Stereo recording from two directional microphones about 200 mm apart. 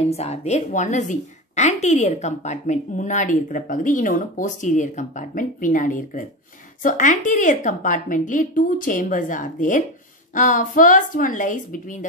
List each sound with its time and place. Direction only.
0.0 s a woman's voice: 30° left (ahead or behind)